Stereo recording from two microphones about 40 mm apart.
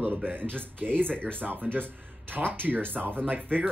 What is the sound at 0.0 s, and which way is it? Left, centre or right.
Speech, right.